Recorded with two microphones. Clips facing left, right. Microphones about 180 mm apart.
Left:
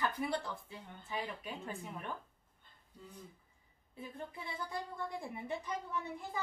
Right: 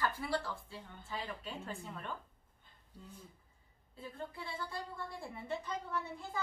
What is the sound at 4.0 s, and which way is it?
A woman's voice, 20° left (ahead or behind).